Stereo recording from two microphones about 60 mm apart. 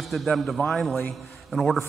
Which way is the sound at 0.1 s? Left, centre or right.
Centre.